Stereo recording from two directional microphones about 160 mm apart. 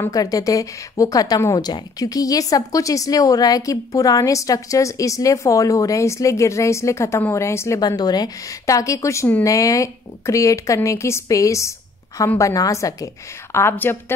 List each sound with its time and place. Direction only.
0.0 s a woman's voice: 20° left (ahead or behind)